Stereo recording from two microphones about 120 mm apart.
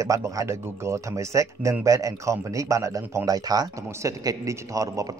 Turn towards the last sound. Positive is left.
turn(degrees=-30)  # may be behind; listen again after turning